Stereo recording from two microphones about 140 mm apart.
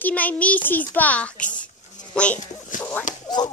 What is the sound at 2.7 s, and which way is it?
Speech, 65° left (ahead or behind).